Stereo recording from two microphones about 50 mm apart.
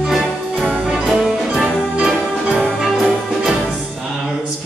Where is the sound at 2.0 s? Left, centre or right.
Centre.